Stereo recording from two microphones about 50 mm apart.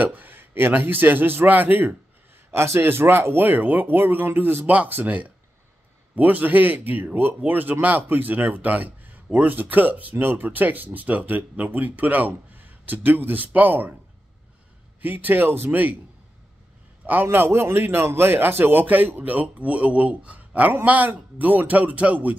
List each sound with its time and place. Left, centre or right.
0.0 s a man's voice: right
2.5 s speech: right
4.6 s a man's voice: right
15.0 s a man's voice: right
17.0 s a man's voice: right